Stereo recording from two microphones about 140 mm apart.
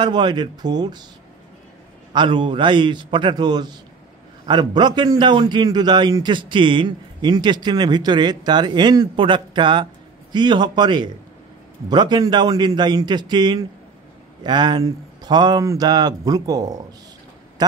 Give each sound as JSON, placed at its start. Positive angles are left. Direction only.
{"t": 0.0, "sound": "a man's voice", "side_deg": -35}
{"t": 2.1, "sound": "a man's voice", "side_deg": -35}